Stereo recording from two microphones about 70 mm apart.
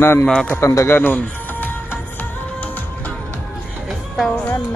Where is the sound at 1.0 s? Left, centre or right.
Left.